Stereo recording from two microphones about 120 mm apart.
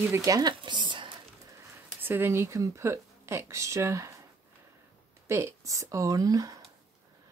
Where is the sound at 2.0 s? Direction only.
20° right (ahead or behind).